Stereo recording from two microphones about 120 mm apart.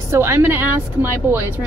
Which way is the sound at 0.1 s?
20° right (ahead or behind).